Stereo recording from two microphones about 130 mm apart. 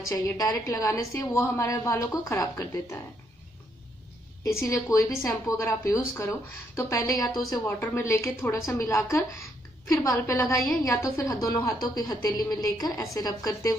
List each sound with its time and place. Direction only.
0.0 s a woman's voice: 25° left (ahead or behind)
4.5 s a woman's voice: 25° left (ahead or behind)